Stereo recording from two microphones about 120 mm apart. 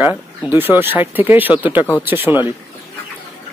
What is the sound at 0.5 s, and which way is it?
Speech, 15° right (ahead or behind).